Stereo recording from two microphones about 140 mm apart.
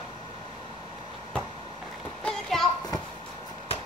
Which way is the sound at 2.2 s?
5° left (ahead or behind).